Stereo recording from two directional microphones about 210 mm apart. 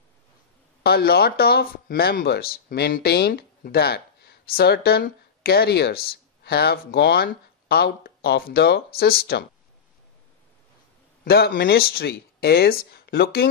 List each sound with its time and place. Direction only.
0.8 s speech: 50° left (ahead or behind)
11.2 s speech: 45° left (ahead or behind)